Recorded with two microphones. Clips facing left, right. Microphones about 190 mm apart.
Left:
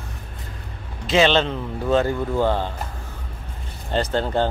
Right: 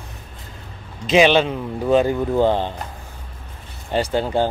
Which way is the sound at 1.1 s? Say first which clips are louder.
Right 3 dB; 15° right (ahead or behind).